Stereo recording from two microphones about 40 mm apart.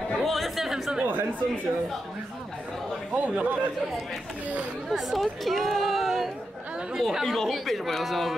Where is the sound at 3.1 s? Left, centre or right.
Right.